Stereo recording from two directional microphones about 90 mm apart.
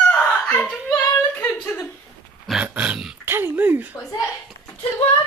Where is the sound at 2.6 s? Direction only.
15° right (ahead or behind).